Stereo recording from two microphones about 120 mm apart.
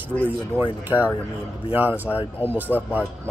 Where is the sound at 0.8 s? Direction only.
15° right (ahead or behind).